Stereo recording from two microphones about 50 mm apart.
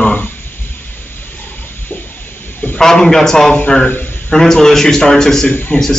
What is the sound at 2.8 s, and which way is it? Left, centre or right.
Speech, centre.